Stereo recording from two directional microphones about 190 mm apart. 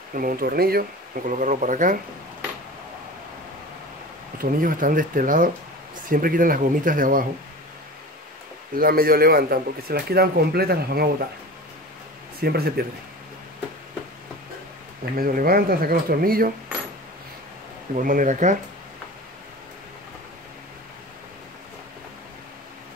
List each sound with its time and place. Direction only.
0.1 s speech: 45° right (ahead or behind)
4.4 s speech: 50° right (ahead or behind)
8.7 s speech: 50° right (ahead or behind)
12.4 s speech: 55° right (ahead or behind)
15.1 s speech: 50° right (ahead or behind)
17.9 s speech: 45° right (ahead or behind)